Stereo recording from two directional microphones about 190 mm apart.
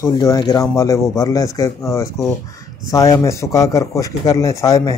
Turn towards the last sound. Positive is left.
turn(degrees=20)  # may be behind; listen again after turning